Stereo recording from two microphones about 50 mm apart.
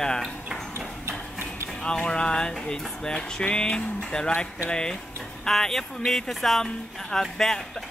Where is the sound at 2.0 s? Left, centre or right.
Centre.